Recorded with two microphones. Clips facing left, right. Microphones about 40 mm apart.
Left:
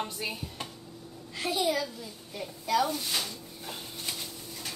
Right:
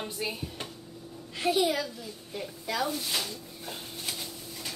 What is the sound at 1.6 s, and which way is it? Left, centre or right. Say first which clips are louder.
A woman's voice: right 1 dB; centre.